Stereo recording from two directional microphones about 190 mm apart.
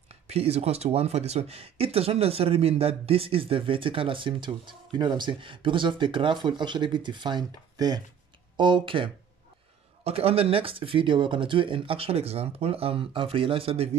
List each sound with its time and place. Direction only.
0.3 s speech: 35° right (ahead or behind)